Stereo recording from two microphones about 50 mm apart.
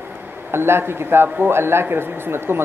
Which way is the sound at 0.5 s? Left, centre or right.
Right.